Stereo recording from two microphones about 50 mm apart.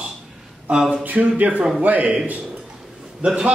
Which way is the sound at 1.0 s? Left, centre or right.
Right.